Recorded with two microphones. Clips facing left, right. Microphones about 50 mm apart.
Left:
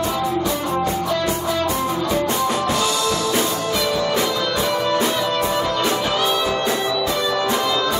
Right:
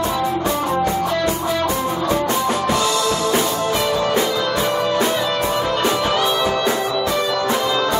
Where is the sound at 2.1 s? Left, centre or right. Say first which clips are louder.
Right 2 dB; right.